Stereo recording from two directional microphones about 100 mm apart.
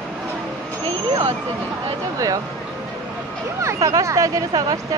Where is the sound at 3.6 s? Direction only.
30° right (ahead or behind).